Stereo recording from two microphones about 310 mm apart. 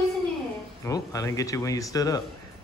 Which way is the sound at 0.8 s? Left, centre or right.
Centre.